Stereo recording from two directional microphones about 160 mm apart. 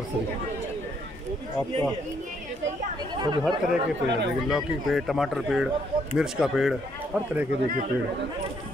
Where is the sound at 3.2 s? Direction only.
30° right (ahead or behind).